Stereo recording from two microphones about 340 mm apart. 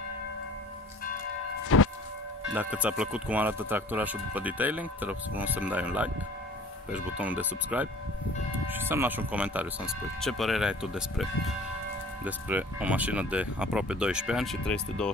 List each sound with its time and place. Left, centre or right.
1.7 s music: left
2.5 s speech: centre
12.3 s speech: centre